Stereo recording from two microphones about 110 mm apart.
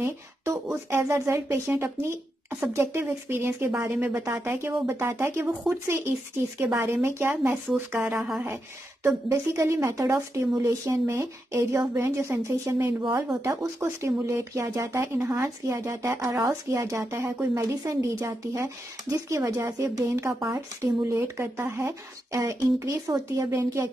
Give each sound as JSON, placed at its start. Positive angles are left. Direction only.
{"t": 0.0, "sound": "speech", "side_deg": -25}
{"t": 9.0, "sound": "speech", "side_deg": -25}